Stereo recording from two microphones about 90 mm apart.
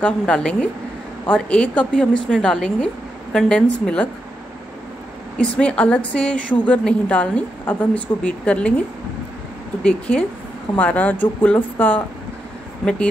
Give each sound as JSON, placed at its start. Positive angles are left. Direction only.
{"t": 0.0, "sound": "a woman's voice", "side_deg": 10}
{"t": 5.4, "sound": "a woman's voice", "side_deg": 10}
{"t": 9.8, "sound": "a woman's voice", "side_deg": 10}